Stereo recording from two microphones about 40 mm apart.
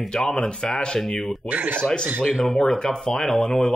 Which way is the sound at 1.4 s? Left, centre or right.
Right.